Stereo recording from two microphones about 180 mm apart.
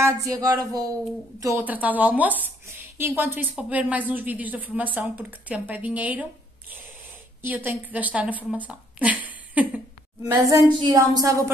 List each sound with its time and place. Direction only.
0.0 s a woman's voice: 20° right (ahead or behind)
7.4 s a woman's voice: 10° right (ahead or behind)
10.3 s a woman's voice: 20° right (ahead or behind)